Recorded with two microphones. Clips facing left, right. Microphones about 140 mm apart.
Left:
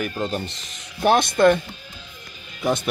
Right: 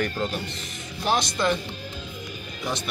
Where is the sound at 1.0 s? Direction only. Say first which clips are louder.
Left 8 dB; 55° left (ahead or behind).